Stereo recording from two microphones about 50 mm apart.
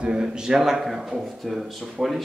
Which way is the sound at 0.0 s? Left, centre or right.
Centre.